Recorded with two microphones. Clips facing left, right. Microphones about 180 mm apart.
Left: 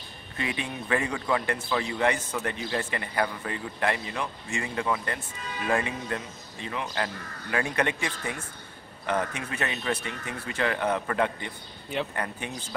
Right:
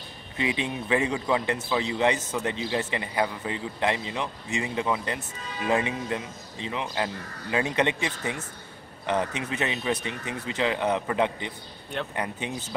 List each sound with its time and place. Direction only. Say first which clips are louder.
0.4 s a man's voice: right 4 dB; 20° right (ahead or behind)